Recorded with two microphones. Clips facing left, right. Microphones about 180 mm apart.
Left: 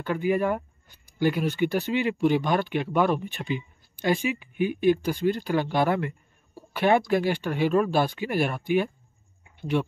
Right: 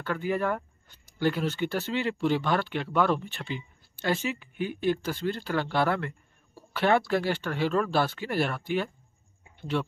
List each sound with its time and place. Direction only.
0.0 s speech: 15° left (ahead or behind)